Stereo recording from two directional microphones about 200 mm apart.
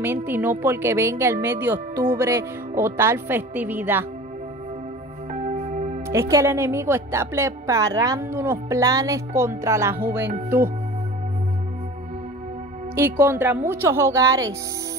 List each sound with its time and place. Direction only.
0.0 s speech: 10° right (ahead or behind)
5.3 s music: 35° right (ahead or behind)
6.0 s speech: 15° right (ahead or behind)
12.9 s speech: 15° right (ahead or behind)